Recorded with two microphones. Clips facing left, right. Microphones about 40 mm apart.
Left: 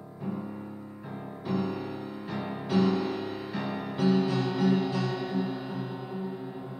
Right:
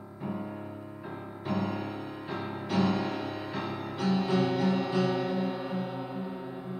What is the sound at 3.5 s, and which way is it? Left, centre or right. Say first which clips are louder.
Music: left 5 dB; centre.